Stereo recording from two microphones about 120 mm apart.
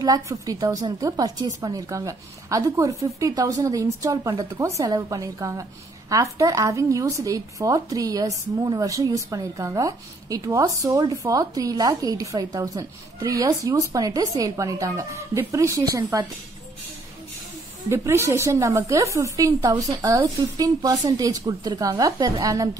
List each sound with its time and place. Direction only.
0.0 s a woman's voice: 30° right (ahead or behind)
17.8 s a woman's voice: 25° right (ahead or behind)